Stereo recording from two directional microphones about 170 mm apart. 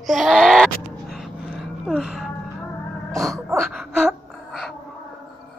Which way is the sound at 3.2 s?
Centre (ahead or behind).